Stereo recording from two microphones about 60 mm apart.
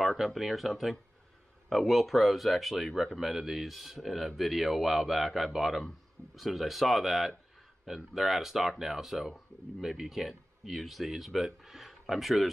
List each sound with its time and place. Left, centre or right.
0.2 s speech: centre